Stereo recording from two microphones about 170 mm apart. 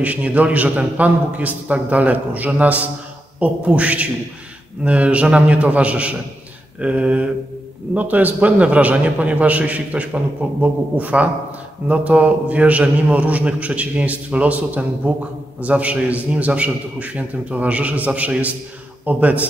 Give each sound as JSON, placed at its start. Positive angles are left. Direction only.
{"t": 0.0, "sound": "a man's voice", "side_deg": -10}